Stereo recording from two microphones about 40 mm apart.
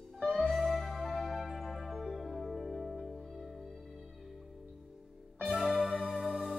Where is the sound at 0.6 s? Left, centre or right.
Centre.